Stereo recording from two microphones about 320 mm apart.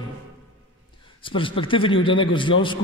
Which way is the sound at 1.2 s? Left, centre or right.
Centre.